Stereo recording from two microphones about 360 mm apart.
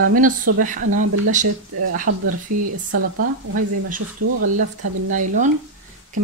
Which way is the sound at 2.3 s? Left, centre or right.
Right.